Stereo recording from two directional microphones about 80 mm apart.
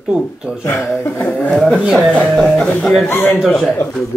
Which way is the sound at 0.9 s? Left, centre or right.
Left.